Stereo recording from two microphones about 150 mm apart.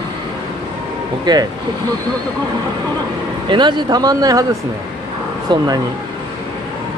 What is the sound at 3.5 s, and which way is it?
Speech, 30° right (ahead or behind).